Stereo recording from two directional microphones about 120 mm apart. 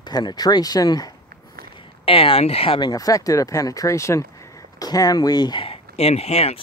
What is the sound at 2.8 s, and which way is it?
Speech, 30° left (ahead or behind).